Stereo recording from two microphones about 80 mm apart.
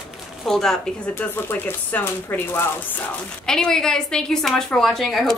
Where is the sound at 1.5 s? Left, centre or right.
Left.